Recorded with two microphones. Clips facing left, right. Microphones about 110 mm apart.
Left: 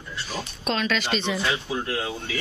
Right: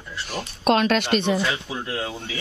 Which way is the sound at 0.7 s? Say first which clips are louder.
Right 6 dB; 55° right (ahead or behind).